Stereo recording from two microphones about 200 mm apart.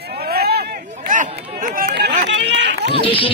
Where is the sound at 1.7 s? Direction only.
55° right (ahead or behind).